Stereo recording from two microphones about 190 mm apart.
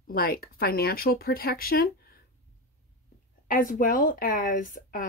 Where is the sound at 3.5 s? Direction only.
45° left (ahead or behind).